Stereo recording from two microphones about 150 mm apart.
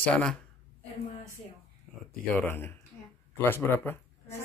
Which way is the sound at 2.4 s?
15° left (ahead or behind).